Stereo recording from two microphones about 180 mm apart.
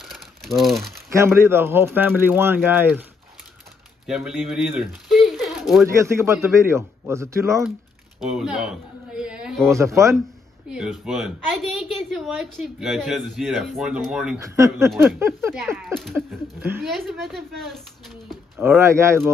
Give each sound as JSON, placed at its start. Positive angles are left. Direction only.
{"t": 0.0, "sound": "crumpling", "side_deg": 0}
{"t": 1.1, "sound": "speech", "side_deg": -15}
{"t": 5.9, "sound": "speech", "side_deg": -15}
{"t": 8.3, "sound": "a sound", "side_deg": -5}
{"t": 9.7, "sound": "speech", "side_deg": -15}
{"t": 10.7, "sound": "a woman's voice", "side_deg": -5}
{"t": 14.4, "sound": "speech", "side_deg": -15}
{"t": 15.8, "sound": "a woman's voice", "side_deg": 0}
{"t": 18.6, "sound": "speech", "side_deg": -15}